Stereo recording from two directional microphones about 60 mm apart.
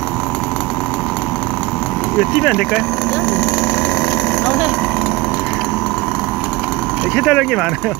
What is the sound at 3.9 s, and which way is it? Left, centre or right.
Vehicle, left.